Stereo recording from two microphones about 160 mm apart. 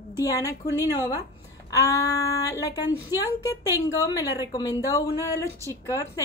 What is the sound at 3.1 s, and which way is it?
Speech, 15° right (ahead or behind).